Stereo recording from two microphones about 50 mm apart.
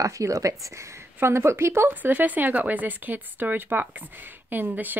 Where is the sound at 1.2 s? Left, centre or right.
Right.